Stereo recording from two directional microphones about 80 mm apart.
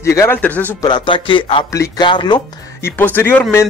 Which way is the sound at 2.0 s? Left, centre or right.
Left.